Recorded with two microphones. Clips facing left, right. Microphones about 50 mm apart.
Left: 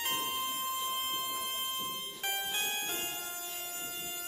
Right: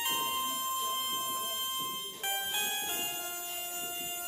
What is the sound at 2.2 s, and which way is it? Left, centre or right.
Music, centre.